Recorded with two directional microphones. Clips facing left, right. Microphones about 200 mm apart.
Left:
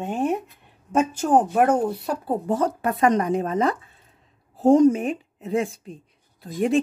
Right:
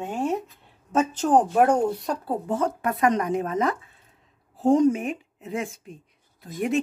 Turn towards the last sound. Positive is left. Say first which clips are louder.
# left 4 dB
turn(degrees=30)  # may be behind; listen again after turning